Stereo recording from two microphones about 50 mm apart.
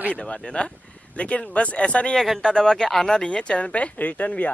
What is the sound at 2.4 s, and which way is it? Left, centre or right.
Speech, centre.